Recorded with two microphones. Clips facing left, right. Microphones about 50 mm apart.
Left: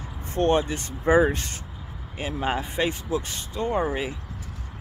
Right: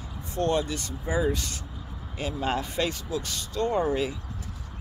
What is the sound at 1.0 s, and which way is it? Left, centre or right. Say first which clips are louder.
Speech: left 8 dB; left.